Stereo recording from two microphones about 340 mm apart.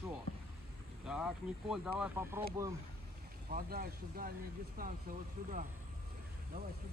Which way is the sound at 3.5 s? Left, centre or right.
Right.